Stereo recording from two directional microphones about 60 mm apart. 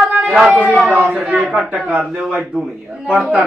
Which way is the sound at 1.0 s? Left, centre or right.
Centre.